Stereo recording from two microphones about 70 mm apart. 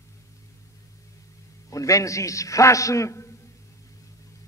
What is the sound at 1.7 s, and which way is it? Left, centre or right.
A man's voice, left.